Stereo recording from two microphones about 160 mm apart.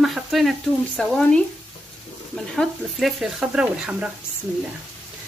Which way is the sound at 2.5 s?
Centre (ahead or behind).